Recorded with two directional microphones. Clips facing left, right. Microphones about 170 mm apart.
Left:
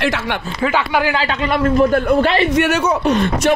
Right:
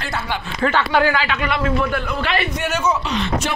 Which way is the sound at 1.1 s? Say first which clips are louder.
Left 2 dB; 30° left (ahead or behind).